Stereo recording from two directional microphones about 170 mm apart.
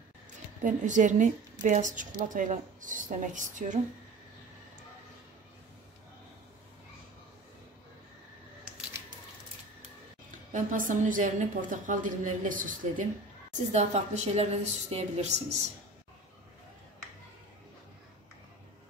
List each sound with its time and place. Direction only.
0.7 s speech: 45° right (ahead or behind)
10.5 s a woman's voice: 50° right (ahead or behind)